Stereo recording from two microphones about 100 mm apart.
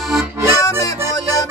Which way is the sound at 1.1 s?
35° left (ahead or behind).